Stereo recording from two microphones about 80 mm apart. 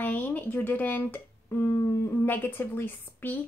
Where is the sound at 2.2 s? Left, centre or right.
Left.